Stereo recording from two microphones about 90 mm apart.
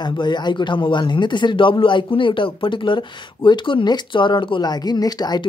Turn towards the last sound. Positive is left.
turn(degrees=50)  # may be behind; listen again after turning